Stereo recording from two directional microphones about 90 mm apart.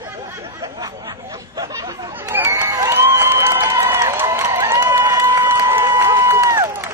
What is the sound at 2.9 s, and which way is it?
Crowd, 25° right (ahead or behind).